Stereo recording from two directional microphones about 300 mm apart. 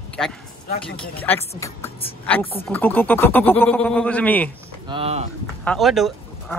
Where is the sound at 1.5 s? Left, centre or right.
Centre.